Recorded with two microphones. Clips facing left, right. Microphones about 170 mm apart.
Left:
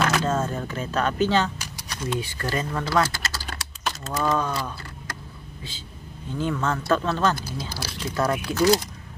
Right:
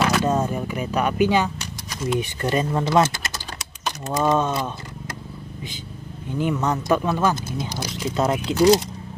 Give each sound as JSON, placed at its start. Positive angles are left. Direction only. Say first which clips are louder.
{"t": 0.2, "sound": "speech", "louder": "right 3 dB", "side_deg": -15}
{"t": 6.3, "sound": "speech", "louder": "right 3 dB", "side_deg": -15}